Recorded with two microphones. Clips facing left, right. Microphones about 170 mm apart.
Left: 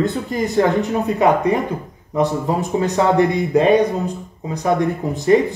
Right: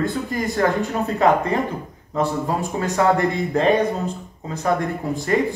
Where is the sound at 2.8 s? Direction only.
20° left (ahead or behind).